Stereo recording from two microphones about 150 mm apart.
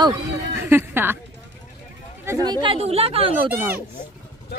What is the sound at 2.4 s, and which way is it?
Speech, 30° right (ahead or behind).